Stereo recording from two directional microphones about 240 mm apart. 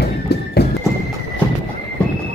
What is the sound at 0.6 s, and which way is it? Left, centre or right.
Clip-clop, left.